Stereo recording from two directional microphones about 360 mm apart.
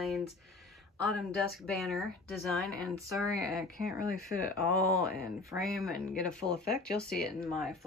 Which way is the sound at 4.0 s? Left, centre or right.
Left.